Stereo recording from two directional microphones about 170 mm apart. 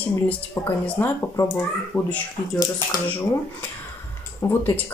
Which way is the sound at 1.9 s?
5° left (ahead or behind).